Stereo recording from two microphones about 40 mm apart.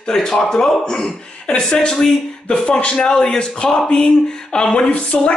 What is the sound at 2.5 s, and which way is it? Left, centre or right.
Speech, left.